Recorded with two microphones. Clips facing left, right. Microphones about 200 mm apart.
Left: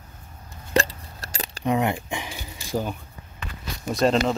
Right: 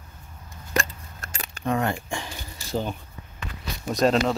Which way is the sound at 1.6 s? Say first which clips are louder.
Left 2 dB; 20° left (ahead or behind).